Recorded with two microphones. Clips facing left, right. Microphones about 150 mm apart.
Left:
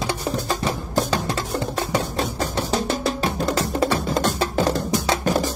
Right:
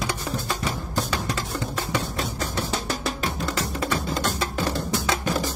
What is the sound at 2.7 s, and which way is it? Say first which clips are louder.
Music: left 6 dB; 30° left (ahead or behind).